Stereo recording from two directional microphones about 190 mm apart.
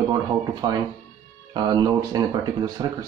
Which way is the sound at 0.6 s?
20° right (ahead or behind).